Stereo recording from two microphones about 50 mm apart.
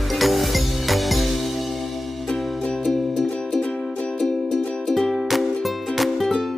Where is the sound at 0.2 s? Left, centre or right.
Centre.